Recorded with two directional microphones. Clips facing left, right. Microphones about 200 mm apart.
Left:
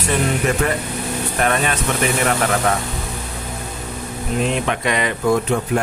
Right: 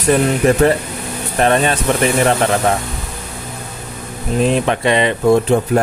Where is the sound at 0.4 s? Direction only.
35° right (ahead or behind).